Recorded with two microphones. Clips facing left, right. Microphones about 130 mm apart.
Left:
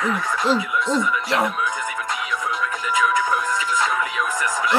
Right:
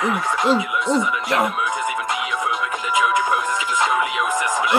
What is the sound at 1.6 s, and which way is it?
Music, 20° right (ahead or behind).